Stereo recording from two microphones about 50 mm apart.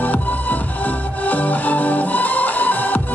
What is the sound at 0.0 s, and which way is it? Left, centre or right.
Music, left.